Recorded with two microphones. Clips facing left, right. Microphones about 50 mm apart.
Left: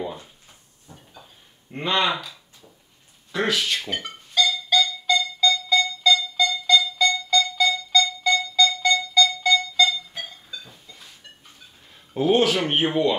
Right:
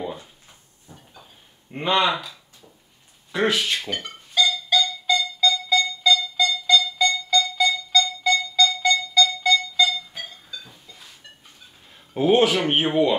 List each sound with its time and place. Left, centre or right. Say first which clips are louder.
0.8 s a sound: even; centre
1.7 s speech: right 2 dB; centre
3.3 s speech: right 2 dB; centre
3.8 s a sound: even; centre
4.4 s music: even; centre
12.1 s speech: right 1 dB; centre